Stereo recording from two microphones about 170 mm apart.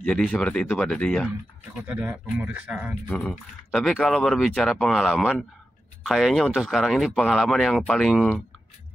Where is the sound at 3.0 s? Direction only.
5° left (ahead or behind).